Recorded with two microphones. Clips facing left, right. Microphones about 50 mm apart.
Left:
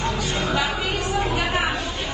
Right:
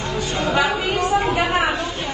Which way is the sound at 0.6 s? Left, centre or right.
Right.